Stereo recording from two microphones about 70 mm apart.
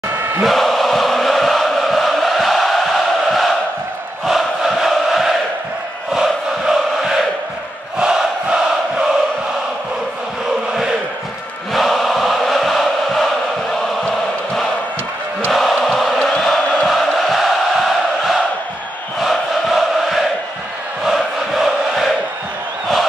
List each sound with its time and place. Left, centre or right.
0.1 s crowd: right
0.4 s chant: centre
4.3 s a sound: centre
8.0 s crowd: centre
11.7 s music: centre
14.0 s chant: centre